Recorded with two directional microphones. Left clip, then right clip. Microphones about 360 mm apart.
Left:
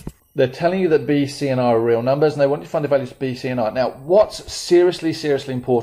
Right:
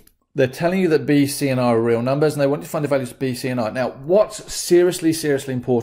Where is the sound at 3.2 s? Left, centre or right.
Right.